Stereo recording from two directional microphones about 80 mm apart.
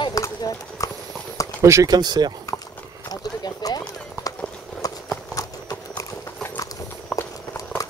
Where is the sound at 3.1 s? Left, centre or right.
Left.